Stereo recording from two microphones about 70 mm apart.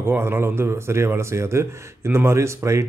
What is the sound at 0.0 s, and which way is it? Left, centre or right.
Speech, right.